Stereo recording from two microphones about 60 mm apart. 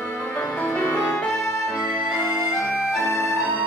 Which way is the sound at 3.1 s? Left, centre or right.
Left.